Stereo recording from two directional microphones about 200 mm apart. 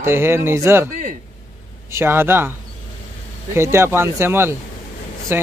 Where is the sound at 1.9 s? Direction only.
10° right (ahead or behind).